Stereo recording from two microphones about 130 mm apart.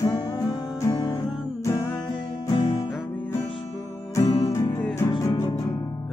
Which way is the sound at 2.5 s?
40° left (ahead or behind).